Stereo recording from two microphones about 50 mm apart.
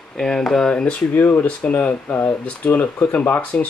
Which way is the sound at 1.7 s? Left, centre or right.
Left.